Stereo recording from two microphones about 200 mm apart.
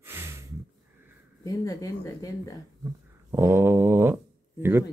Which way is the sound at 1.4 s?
15° left (ahead or behind).